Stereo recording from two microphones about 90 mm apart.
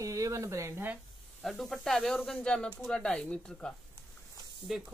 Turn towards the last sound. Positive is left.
turn(degrees=0)  # may be behind; listen again after turning